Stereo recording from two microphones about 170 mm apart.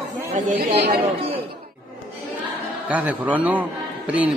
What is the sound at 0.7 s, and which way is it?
Speech, 75° right (ahead or behind).